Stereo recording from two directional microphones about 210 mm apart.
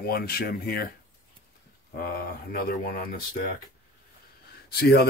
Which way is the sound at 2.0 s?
45° left (ahead or behind).